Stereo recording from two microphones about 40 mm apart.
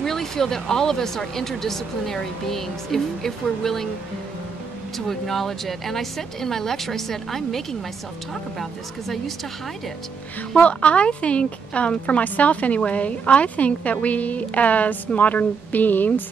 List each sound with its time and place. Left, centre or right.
0.0 s speech: centre
4.9 s speech: centre
10.6 s a woman's voice: left